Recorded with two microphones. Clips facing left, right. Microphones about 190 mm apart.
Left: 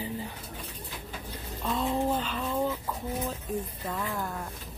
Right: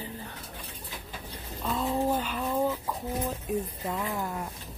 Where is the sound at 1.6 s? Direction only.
Centre (ahead or behind).